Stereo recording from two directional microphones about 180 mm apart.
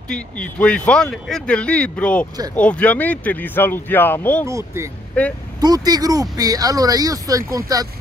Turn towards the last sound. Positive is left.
turn(degrees=-20)  # may be behind; listen again after turning